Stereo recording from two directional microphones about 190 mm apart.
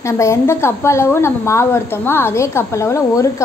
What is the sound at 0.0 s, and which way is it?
A woman's voice, 15° left (ahead or behind).